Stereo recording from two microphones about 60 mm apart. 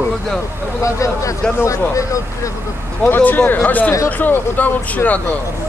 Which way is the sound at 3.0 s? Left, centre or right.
Left.